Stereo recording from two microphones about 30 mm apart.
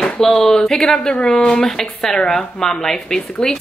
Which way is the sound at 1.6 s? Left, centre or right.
Centre.